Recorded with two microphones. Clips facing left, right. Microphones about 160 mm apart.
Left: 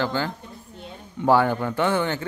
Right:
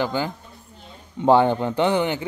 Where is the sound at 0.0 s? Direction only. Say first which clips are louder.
Right 1 dB; 15° right (ahead or behind).